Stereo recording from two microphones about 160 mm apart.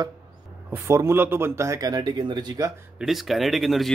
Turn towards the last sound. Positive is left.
turn(degrees=0)  # may be behind; listen again after turning